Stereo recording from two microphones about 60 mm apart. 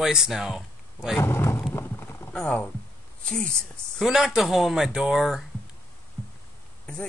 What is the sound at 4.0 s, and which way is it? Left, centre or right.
Speech, centre.